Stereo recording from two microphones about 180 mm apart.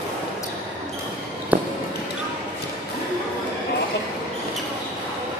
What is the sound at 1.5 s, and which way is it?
Basketball bounce, 10° right (ahead or behind).